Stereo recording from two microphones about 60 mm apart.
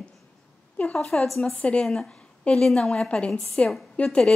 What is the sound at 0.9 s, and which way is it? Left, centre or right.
A woman's voice, centre.